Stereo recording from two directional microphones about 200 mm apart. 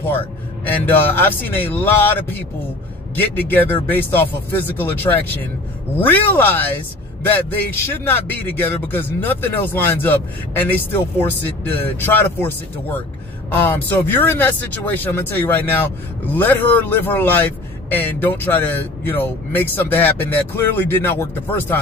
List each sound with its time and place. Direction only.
0.7 s speech: 10° left (ahead or behind)